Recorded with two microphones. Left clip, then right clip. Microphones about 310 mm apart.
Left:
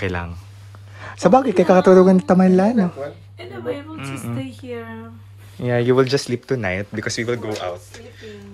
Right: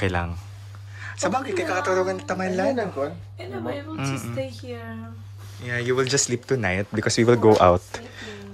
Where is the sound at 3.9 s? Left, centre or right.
Centre.